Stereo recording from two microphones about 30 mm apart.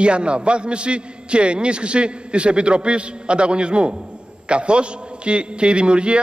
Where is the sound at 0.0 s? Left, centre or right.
Right.